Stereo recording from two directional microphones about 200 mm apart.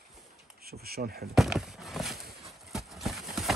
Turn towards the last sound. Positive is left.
turn(degrees=0)  # may be behind; listen again after turning